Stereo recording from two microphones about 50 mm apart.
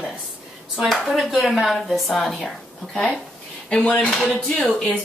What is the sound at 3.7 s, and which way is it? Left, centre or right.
Speech, left.